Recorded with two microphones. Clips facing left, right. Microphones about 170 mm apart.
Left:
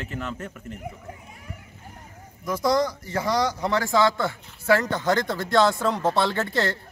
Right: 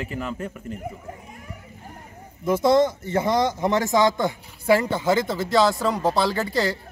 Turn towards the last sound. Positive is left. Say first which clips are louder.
# right 2 dB
turn(degrees=0)  # may be behind; listen again after turning